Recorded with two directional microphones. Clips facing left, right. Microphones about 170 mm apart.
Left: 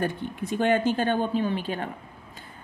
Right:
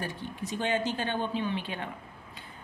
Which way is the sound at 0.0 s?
55° left (ahead or behind).